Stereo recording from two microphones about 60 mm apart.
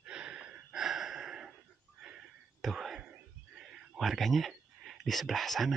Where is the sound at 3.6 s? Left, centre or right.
Centre.